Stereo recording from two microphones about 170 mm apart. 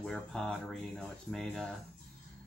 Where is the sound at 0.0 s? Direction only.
5° left (ahead or behind).